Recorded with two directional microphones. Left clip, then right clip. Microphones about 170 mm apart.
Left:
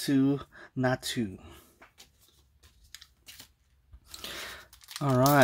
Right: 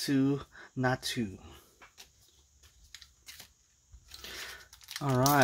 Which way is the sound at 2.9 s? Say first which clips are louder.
Left 1 dB; 25° left (ahead or behind).